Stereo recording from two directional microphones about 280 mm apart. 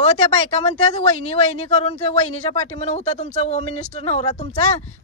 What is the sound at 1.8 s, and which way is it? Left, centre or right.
A man's voice, left.